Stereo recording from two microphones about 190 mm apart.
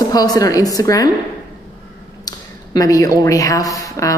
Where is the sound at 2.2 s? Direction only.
20° left (ahead or behind).